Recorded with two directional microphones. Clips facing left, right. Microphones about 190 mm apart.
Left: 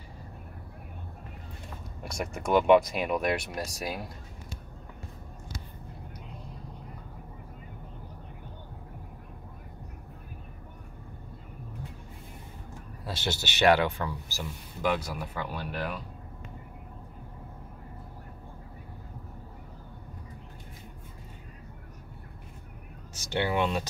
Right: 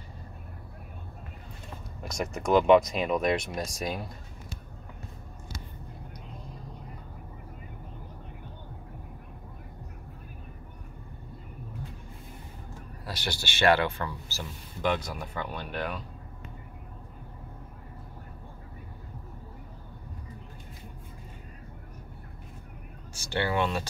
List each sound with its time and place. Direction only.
2.0 s speech: 10° left (ahead or behind)
13.0 s speech: 20° left (ahead or behind); by 16.0 s 5° left (ahead or behind)
23.2 s speech: 20° left (ahead or behind)